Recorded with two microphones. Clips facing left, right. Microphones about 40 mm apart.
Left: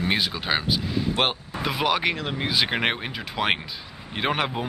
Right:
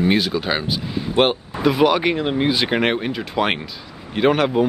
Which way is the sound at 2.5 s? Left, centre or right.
Centre.